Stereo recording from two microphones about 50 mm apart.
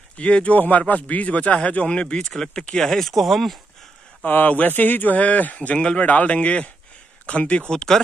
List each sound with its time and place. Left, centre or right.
0.2 s speech: left; by 3.5 s centre
4.3 s speech: left
7.7 s speech: centre